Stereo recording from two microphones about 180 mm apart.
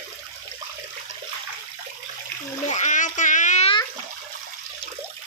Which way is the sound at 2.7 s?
40° left (ahead or behind).